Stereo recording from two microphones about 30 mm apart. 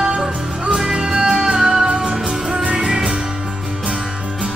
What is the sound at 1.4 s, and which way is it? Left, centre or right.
Music, centre.